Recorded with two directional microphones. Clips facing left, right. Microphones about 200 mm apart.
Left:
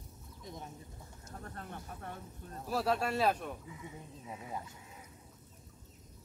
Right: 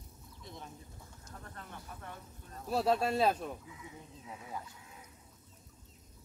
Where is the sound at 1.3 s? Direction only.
45° left (ahead or behind).